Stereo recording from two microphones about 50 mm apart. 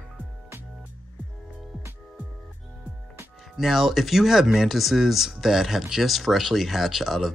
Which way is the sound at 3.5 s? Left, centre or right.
Centre.